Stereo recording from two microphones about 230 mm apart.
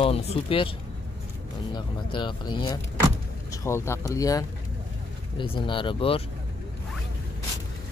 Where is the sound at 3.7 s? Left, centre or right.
Centre.